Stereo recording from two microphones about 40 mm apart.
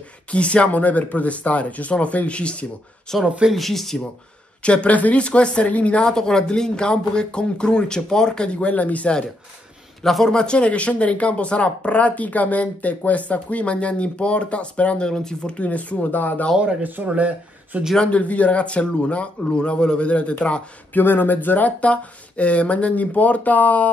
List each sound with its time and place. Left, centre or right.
0.3 s speech: left
3.1 s speech: centre
4.6 s speech: left
5.2 s speech: left
6.1 s speech: centre; by 9.1 s left
10.0 s speech: centre
10.3 s speech: left
15.0 s speech: centre
15.5 s speech: left
16.2 s speech: left
16.8 s speech: right
18.1 s speech: left
20.9 s speech: left
21.7 s speech: left